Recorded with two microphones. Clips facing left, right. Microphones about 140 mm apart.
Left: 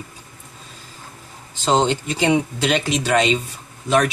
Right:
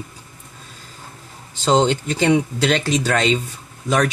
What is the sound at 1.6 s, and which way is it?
Speech, 5° left (ahead or behind).